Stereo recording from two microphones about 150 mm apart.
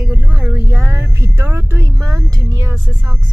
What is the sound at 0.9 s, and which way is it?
Speech, 15° right (ahead or behind).